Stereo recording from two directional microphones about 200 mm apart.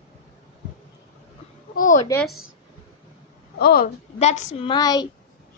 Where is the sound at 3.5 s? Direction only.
50° left (ahead or behind).